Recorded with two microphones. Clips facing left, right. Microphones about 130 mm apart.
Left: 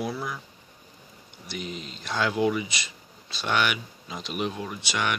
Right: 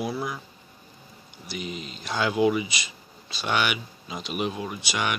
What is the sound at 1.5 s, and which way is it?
Speech, 5° right (ahead or behind).